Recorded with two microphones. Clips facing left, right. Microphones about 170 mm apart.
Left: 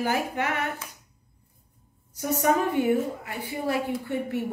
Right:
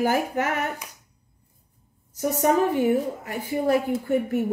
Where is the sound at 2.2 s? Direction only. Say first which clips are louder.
Right 3 dB; 40° right (ahead or behind).